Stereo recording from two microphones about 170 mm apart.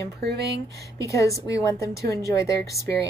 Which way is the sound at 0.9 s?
20° left (ahead or behind).